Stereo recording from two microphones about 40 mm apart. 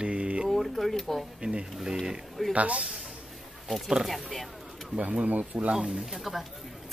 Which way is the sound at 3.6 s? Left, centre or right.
Centre.